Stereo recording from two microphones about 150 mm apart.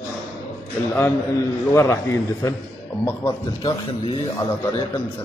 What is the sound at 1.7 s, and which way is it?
A man's voice, 15° left (ahead or behind).